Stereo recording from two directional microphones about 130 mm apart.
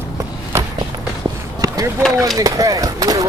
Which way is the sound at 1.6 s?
30° right (ahead or behind).